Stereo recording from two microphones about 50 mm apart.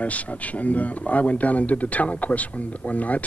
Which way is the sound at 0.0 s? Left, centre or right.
Left.